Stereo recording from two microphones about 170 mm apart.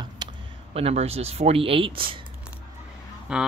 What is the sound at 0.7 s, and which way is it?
Speech, 35° right (ahead or behind).